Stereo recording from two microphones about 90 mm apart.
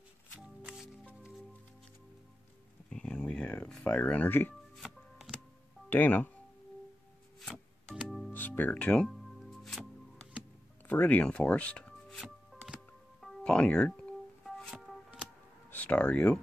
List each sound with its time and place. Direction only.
2.9 s a sound: 10° left (ahead or behind)
4.8 s music: 5° right (ahead or behind)
5.9 s speech: 20° left (ahead or behind)
7.5 s music: 5° right (ahead or behind)
8.3 s music: 20° left (ahead or behind); by 9.8 s 5° left (ahead or behind)
10.9 s speech: 15° left (ahead or behind)
12.2 s music: centre (ahead or behind)
13.4 s speech: 10° left (ahead or behind)
14.4 s music: 5° left (ahead or behind)
15.7 s speech: 15° left (ahead or behind)